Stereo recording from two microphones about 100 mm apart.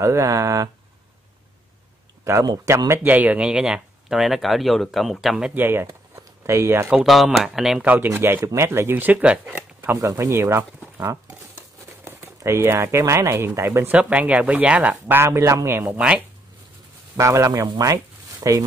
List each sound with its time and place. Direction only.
0.0 s a man's voice: 30° right (ahead or behind)
2.2 s a man's voice: 35° right (ahead or behind)
3.1 s speech: 15° right (ahead or behind)
5.5 s speech: 20° right (ahead or behind)
6.9 s speech: centre (ahead or behind)
7.8 s speech: 15° right (ahead or behind)
9.9 s a man's voice: 35° right (ahead or behind)
12.0 s speech: 25° right (ahead or behind)
13.9 s speech: 10° right (ahead or behind)
16.0 s speech: 10° right (ahead or behind)
17.2 s a man's voice: 30° right (ahead or behind)
17.7 s a sound: 35° right (ahead or behind)